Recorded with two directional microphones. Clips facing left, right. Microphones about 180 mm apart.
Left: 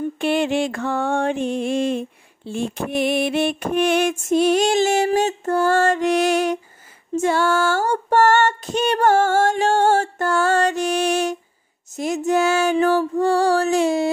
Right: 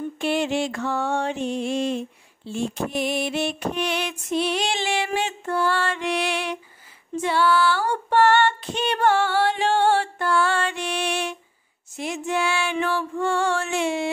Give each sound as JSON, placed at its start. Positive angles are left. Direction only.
{"t": 0.2, "sound": "music", "side_deg": 55}